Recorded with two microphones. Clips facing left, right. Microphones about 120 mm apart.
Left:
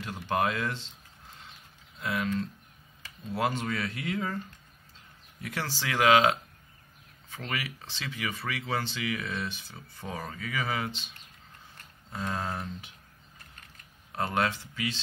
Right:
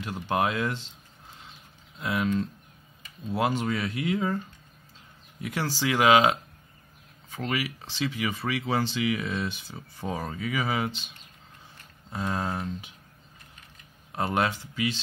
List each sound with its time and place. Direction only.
0.0 s speech: 15° right (ahead or behind)
2.0 s speech: 20° right (ahead or behind)
5.4 s speech: 15° right (ahead or behind)
7.3 s speech: 15° right (ahead or behind)
12.1 s speech: 10° right (ahead or behind)
14.1 s speech: 15° right (ahead or behind)